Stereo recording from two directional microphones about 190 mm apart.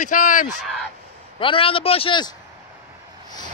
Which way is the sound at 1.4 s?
30° left (ahead or behind).